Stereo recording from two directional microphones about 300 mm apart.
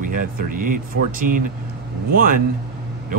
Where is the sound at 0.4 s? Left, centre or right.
Right.